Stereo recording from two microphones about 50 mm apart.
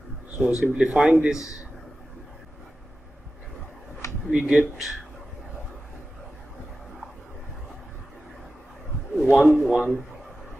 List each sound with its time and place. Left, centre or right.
0.4 s speech: centre
4.3 s speech: right
9.1 s a sound: centre
9.6 s speech: centre